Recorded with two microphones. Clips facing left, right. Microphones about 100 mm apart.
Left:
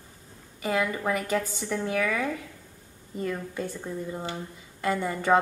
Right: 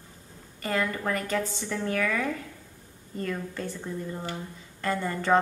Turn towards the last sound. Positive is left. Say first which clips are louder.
# left 1 dB
turn(degrees=10)  # may be behind; listen again after turning